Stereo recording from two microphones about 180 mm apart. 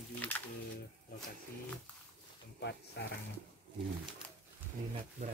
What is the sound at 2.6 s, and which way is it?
Speech, 70° left (ahead or behind).